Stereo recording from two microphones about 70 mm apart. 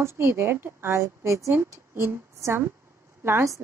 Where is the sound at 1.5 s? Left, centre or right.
Right.